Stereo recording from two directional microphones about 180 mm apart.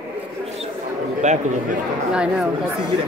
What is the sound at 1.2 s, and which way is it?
Speech, 40° right (ahead or behind).